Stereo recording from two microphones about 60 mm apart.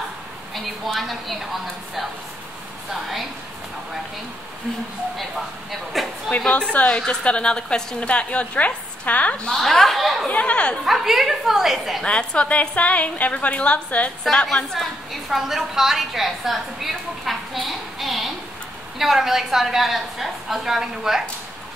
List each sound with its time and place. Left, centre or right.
0.8 s a woman's voice: centre
5.1 s a woman's voice: centre
6.5 s a woman's voice: centre
9.6 s a woman's voice: centre
10.2 s speech: centre
10.9 s a woman's voice: centre
12.0 s a woman's voice: centre
14.3 s speech: centre
15.2 s a woman's voice: centre